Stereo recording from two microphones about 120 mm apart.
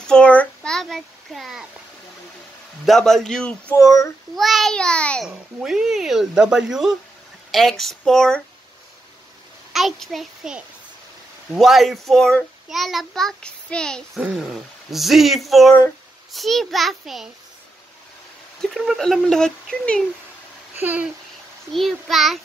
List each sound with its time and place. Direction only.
0.0 s a child's voice: 10° left (ahead or behind)
2.8 s a child's voice: centre (ahead or behind)
3.7 s speech: 25° left (ahead or behind)
4.4 s a child's voice: centre (ahead or behind)
5.3 s a child's voice: 5° right (ahead or behind)
9.7 s a child's voice: centre (ahead or behind)
18.6 s a child's voice: centre (ahead or behind)
20.7 s speech: 15° right (ahead or behind)
21.7 s a child's voice: centre (ahead or behind)